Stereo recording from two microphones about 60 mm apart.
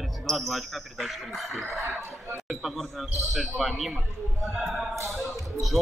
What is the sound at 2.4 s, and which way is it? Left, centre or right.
Speech, centre.